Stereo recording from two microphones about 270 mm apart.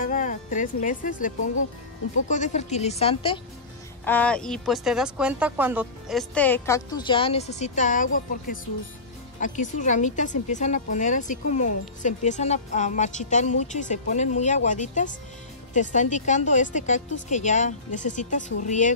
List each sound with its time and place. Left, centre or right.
0.0 s speech: left
4.0 s a woman's voice: centre; by 18.9 s left